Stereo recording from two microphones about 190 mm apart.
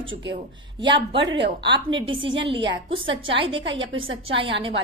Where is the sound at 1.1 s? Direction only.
65° right (ahead or behind).